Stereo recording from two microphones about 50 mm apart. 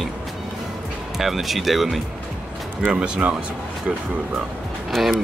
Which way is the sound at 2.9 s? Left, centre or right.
Right.